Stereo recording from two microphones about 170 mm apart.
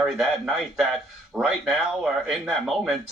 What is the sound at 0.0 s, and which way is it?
A man's voice, centre (ahead or behind).